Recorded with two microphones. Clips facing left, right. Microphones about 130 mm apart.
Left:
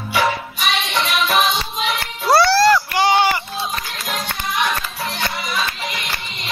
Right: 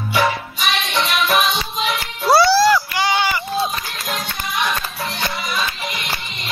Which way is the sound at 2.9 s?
45° left (ahead or behind).